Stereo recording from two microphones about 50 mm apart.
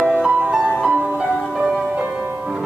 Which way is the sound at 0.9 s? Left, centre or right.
Right.